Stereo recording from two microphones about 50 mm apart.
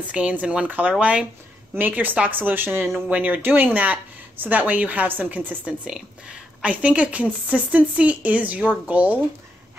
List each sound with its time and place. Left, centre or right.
0.0 s a woman's voice: right
3.1 s speech: right
5.7 s a woman's voice: centre